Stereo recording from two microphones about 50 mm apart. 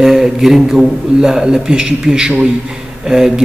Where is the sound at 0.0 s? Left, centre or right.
Centre.